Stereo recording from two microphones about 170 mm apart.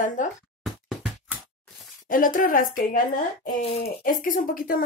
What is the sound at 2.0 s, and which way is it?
Speech, 55° left (ahead or behind).